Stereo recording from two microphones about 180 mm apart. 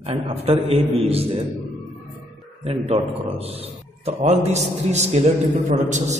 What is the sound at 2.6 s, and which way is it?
A man's voice, 35° right (ahead or behind).